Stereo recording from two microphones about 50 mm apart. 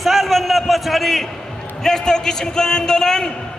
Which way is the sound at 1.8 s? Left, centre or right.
Centre.